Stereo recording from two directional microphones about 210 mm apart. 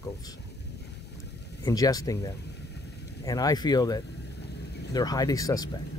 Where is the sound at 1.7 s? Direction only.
15° left (ahead or behind).